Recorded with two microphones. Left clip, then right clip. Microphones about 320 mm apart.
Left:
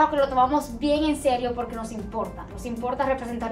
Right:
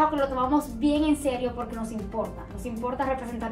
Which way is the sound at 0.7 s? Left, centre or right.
Centre.